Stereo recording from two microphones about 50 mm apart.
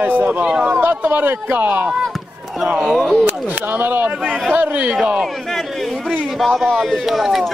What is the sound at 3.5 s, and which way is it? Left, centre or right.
Speech, right.